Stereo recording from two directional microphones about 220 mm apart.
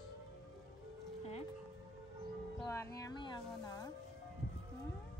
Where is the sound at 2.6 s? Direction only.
15° left (ahead or behind).